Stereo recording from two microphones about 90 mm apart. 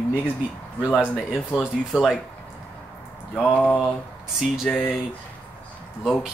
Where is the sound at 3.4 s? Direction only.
15° left (ahead or behind).